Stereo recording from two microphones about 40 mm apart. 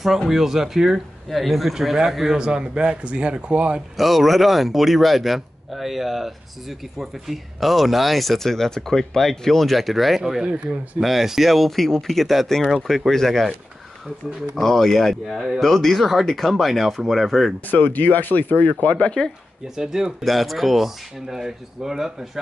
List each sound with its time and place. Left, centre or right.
0.3 s speech: centre; by 3.8 s right
3.9 s speech: centre
10.4 s speech: right
11.0 s speech: centre
14.5 s speech: centre
15.2 s speech: centre
15.6 s speech: centre
17.6 s speech: left
18.9 s speech: left
19.8 s speech: centre
20.2 s speech: centre